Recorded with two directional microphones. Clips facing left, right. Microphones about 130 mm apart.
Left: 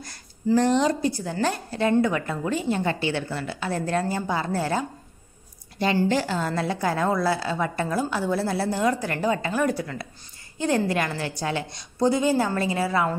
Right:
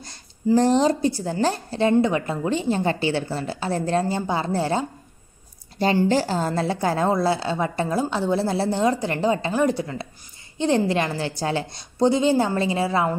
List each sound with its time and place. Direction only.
0.6 s a woman's voice: 35° right (ahead or behind)
6.0 s a woman's voice: 35° right (ahead or behind)